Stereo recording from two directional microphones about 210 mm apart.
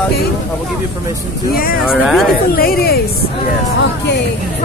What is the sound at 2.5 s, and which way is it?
Speech, 45° left (ahead or behind).